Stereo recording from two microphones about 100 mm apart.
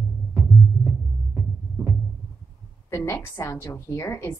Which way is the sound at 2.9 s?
30° left (ahead or behind).